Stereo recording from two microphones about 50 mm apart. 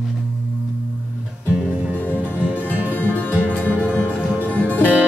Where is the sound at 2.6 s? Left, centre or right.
Left.